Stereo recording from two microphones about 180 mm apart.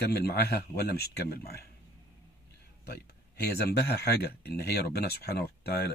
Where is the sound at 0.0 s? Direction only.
60° left (ahead or behind).